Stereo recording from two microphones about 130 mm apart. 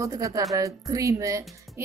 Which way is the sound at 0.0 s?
25° right (ahead or behind).